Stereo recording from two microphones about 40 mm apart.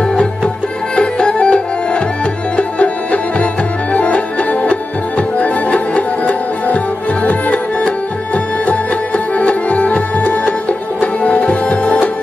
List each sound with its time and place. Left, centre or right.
0.9 s music: left